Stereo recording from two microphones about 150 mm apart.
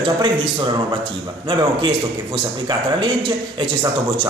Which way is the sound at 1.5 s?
30° right (ahead or behind).